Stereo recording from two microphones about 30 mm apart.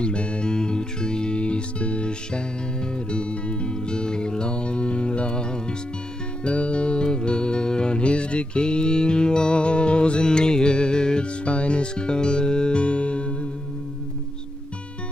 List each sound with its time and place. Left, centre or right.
0.0 s music: left
1.4 s music: left
3.7 s music: left
6.4 s music: left